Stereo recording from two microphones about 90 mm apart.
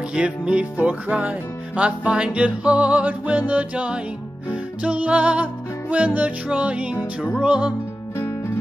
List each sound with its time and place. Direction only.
0.1 s music: 10° right (ahead or behind)
8.2 s music: 25° left (ahead or behind)